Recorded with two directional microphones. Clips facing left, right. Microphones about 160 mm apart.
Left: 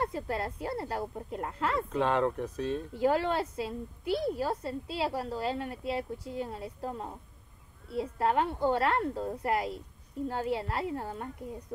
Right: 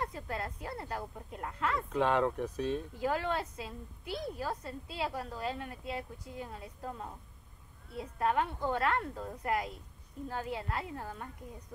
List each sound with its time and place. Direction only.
0.0 s a woman's voice: 30° left (ahead or behind)
2.0 s speech: 5° right (ahead or behind)
3.0 s a woman's voice: 30° left (ahead or behind)